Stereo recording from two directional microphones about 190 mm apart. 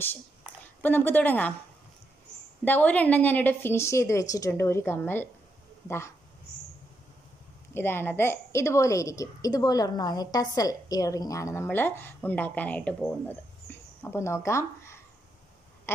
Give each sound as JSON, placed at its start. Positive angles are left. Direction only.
{"t": 0.8, "sound": "a woman's voice", "side_deg": 10}
{"t": 2.6, "sound": "a woman's voice", "side_deg": 10}
{"t": 7.7, "sound": "a woman's voice", "side_deg": 10}
{"t": 13.7, "sound": "a sound", "side_deg": 10}